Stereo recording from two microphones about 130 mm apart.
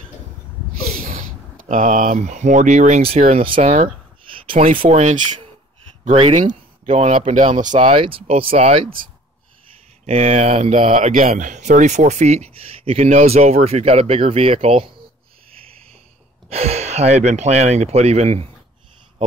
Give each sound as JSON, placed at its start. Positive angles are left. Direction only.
{"t": 1.6, "sound": "speech", "side_deg": -90}
{"t": 3.1, "sound": "speech", "side_deg": -60}
{"t": 4.3, "sound": "speech", "side_deg": -50}
{"t": 7.8, "sound": "speech", "side_deg": -45}
{"t": 10.0, "sound": "speech", "side_deg": -55}
{"t": 16.4, "sound": "speech", "side_deg": -55}